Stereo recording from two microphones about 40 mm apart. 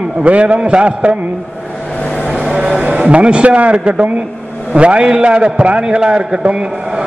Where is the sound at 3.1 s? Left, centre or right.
Right.